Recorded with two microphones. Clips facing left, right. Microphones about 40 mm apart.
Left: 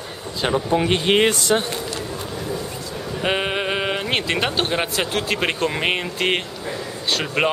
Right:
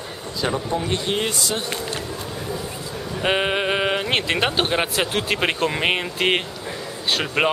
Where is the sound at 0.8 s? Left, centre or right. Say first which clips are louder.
Left 6 dB; left.